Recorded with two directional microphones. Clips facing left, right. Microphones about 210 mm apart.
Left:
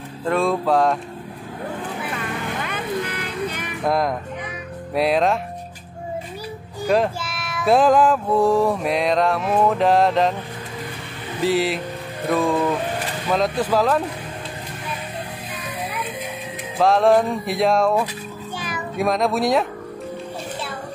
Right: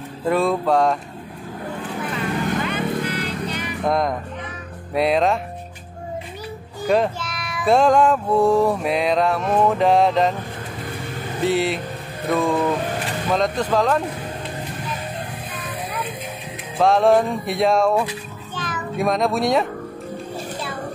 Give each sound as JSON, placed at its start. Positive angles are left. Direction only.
{"t": 0.2, "sound": "speech", "side_deg": -5}
{"t": 2.7, "sound": "music", "side_deg": 50}
{"t": 3.8, "sound": "speech", "side_deg": 0}
{"t": 6.9, "sound": "speech", "side_deg": 5}
{"t": 11.4, "sound": "speech", "side_deg": 0}
{"t": 16.7, "sound": "a child's voice", "side_deg": 0}